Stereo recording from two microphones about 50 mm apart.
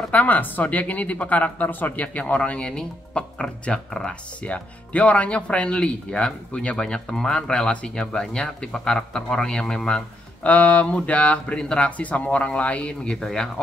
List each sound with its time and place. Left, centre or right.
0.1 s speech: left; by 4.2 s centre
4.4 s speech: left
10.4 s speech: left; by 13.5 s centre